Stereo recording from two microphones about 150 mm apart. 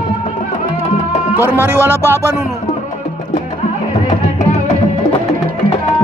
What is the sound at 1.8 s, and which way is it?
Speech, 20° left (ahead or behind).